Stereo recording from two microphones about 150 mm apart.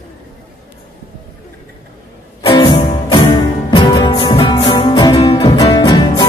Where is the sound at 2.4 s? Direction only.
35° left (ahead or behind).